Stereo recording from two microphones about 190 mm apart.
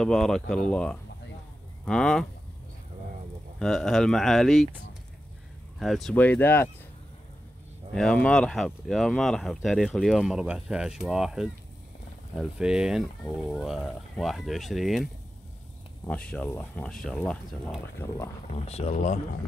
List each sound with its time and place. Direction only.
0.0 s speech: centre (ahead or behind)
3.5 s speech: 5° left (ahead or behind)
5.8 s speech: centre (ahead or behind)
7.9 s speech: 5° left (ahead or behind)
16.1 s speech: 5° left (ahead or behind)
18.5 s speech: 35° left (ahead or behind)